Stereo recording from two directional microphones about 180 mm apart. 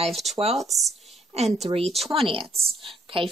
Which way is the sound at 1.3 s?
35° right (ahead or behind).